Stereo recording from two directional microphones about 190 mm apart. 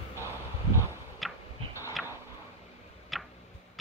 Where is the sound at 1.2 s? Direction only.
Centre (ahead or behind).